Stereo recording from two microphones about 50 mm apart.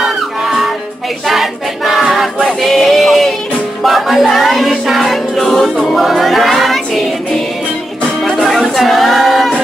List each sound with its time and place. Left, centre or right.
0.0 s music: centre
1.2 s a sound: centre
3.8 s music: centre
6.0 s choir: centre
8.2 s music: centre